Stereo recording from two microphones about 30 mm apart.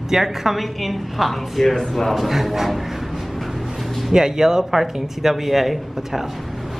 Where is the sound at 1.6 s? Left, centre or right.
Centre.